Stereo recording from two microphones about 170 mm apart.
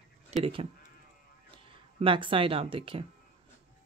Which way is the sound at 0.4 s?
35° right (ahead or behind).